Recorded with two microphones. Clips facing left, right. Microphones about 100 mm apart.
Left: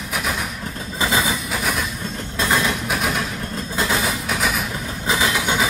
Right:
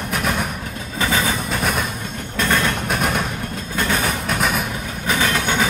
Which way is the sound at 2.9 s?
Centre (ahead or behind).